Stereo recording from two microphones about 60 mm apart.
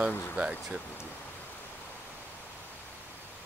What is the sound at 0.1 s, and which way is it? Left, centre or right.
Speech, left.